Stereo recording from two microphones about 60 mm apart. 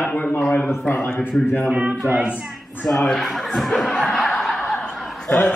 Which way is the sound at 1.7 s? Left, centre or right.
Right.